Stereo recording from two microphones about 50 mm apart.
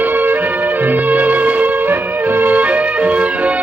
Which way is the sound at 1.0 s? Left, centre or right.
Right.